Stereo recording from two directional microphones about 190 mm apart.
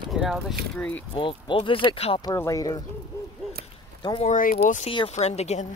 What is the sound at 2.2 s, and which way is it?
Speech, 15° left (ahead or behind).